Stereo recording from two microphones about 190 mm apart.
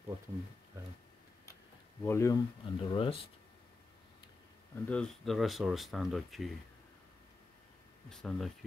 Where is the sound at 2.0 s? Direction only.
15° left (ahead or behind).